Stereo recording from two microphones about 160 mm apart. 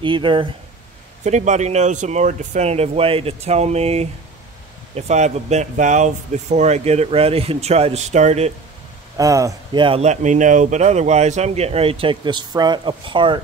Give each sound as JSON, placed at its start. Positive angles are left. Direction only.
{"t": 0.0, "sound": "speech", "side_deg": -30}
{"t": 1.2, "sound": "speech", "side_deg": -50}
{"t": 9.1, "sound": "speech", "side_deg": -20}
{"t": 9.8, "sound": "speech", "side_deg": -40}